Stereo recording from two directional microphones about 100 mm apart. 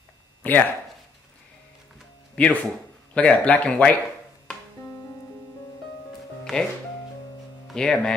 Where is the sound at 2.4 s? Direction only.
10° left (ahead or behind).